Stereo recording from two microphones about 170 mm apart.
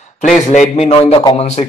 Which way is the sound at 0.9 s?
25° left (ahead or behind).